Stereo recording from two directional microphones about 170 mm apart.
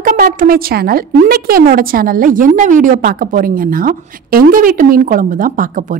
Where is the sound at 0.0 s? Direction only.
55° right (ahead or behind).